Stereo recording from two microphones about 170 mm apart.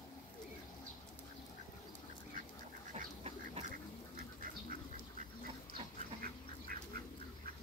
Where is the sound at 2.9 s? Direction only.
40° right (ahead or behind).